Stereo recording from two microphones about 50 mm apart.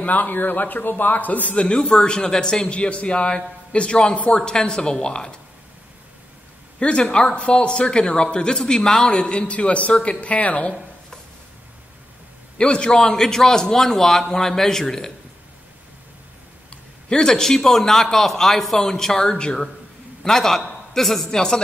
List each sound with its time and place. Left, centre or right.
0.0 s a man's voice: left
1.6 s a man's voice: centre
6.8 s a man's voice: centre
12.5 s a man's voice: centre
16.7 s a sound: centre
17.3 s a man's voice: centre
20.2 s a man's voice: centre
21.3 s a man's voice: centre